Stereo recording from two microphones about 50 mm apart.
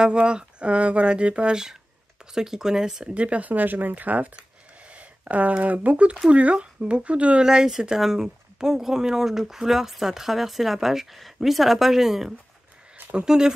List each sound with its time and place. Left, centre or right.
0.0 s speech: centre
3.2 s speech: right
7.4 s speech: centre